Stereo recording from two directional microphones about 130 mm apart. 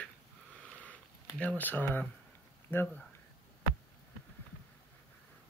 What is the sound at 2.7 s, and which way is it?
Speech, 15° left (ahead or behind).